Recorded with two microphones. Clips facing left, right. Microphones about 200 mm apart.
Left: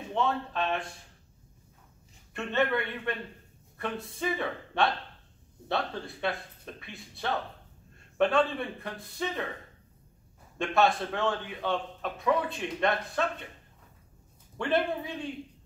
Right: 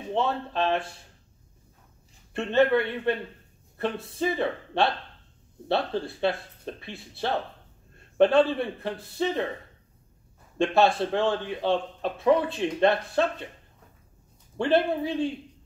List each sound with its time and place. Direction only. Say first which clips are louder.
0.1 s a man's voice: right 3 dB; 30° right (ahead or behind)
2.3 s a man's voice: right 7 dB; 30° right (ahead or behind)
10.6 s a man's voice: right 4 dB; 30° right (ahead or behind)
14.6 s a man's voice: right 5 dB; 30° right (ahead or behind)